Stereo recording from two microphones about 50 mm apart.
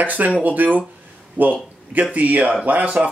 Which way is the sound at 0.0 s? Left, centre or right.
Right.